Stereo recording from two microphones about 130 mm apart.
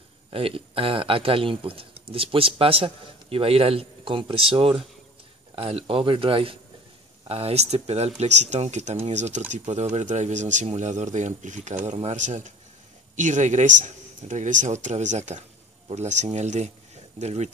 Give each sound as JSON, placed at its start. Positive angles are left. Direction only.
{"t": 0.3, "sound": "a man's voice", "side_deg": -45}